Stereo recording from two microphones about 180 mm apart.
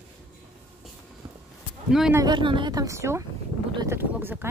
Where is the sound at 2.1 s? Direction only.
25° right (ahead or behind).